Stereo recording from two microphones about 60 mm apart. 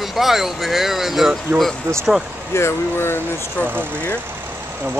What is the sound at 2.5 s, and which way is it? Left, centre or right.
Speech, left.